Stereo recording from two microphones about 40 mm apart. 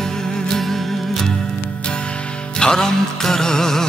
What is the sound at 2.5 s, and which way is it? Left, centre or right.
Music, centre.